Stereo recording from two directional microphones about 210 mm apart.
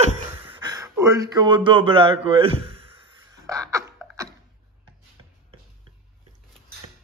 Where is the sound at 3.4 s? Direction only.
15° right (ahead or behind).